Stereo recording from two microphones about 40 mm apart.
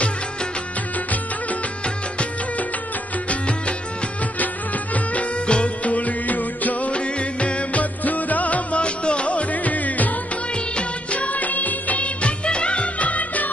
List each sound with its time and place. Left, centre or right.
3.3 s music: left
4.9 s music: left
6.9 s music: left
7.8 s music: left
10.8 s music of bollywood: left
12.2 s music of bollywood: left